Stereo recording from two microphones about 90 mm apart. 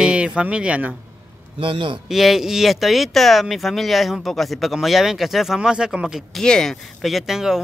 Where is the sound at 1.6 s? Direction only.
75° right (ahead or behind).